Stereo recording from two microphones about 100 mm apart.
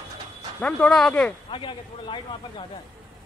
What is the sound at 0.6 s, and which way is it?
Speech, 10° left (ahead or behind).